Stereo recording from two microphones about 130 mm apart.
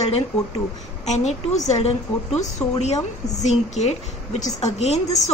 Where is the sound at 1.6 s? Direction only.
55° left (ahead or behind).